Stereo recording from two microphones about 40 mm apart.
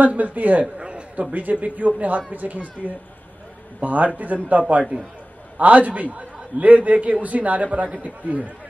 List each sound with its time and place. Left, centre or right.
0.0 s a man's voice: right
0.7 s a sound: right
1.3 s a man's voice: right